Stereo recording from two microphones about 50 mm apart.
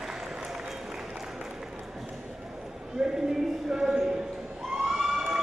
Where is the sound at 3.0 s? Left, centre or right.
Centre.